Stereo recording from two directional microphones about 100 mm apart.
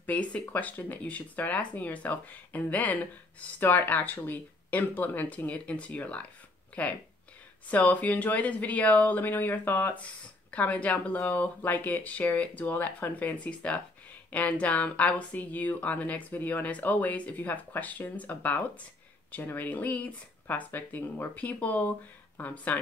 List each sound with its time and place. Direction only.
0.0 s speech: 15° left (ahead or behind)